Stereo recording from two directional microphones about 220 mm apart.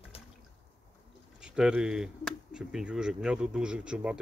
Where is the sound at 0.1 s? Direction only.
25° left (ahead or behind).